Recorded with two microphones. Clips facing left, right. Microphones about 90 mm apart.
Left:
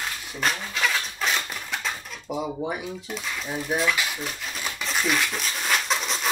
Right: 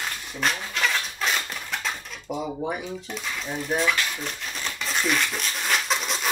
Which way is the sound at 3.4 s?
Centre (ahead or behind).